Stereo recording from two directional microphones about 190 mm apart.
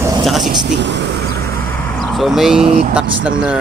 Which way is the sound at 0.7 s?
65° right (ahead or behind).